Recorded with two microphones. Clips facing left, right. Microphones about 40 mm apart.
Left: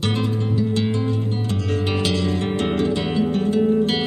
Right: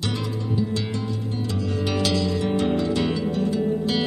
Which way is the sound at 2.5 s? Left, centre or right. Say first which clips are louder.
Left 1 dB; left.